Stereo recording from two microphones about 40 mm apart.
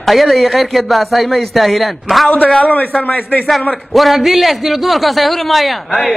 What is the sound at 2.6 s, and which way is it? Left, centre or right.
Speech, left.